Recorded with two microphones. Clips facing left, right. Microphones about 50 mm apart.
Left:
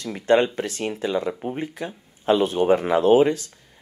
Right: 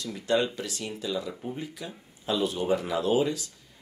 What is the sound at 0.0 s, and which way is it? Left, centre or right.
Speech, left.